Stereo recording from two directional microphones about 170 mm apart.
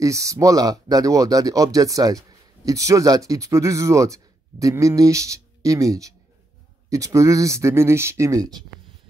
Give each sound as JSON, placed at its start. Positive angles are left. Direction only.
{"t": 0.0, "sound": "speech", "side_deg": -20}